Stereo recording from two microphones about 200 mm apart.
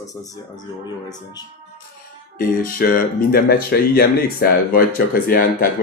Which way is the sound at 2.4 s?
45° left (ahead or behind).